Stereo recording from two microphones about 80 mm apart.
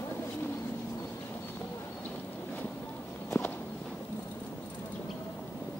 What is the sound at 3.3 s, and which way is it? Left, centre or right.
Walk, left.